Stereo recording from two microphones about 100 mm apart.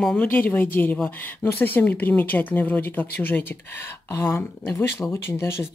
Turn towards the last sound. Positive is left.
turn(degrees=25)  # may be behind; listen again after turning